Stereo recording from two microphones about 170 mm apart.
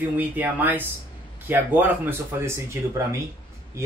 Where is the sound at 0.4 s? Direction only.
10° right (ahead or behind).